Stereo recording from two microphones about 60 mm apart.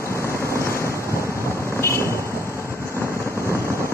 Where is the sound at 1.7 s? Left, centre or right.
Left.